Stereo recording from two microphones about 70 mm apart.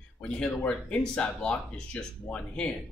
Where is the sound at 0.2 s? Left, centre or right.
Centre.